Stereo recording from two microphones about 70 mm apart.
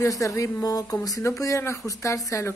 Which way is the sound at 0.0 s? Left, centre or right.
Left.